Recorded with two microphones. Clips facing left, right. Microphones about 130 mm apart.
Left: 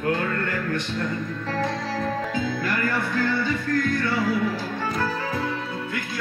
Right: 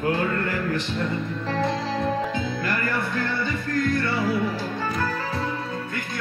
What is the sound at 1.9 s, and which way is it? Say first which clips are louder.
Music: right 1 dB; 20° right (ahead or behind).